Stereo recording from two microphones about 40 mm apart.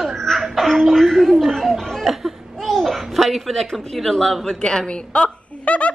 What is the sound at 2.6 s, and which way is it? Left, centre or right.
A child's voice, centre.